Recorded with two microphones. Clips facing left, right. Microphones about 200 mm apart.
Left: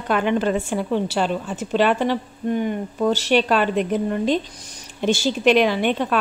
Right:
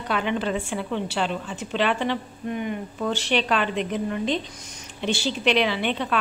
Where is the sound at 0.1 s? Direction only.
50° left (ahead or behind).